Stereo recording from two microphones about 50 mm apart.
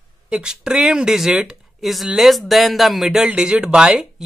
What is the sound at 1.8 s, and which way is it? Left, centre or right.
Speech, centre.